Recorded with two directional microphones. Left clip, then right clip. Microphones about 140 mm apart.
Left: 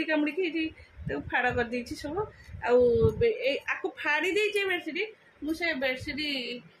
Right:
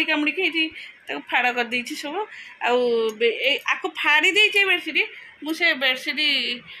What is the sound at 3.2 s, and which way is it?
A woman's voice, 15° right (ahead or behind).